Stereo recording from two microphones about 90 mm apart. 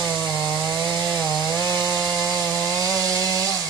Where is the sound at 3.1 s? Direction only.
35° right (ahead or behind).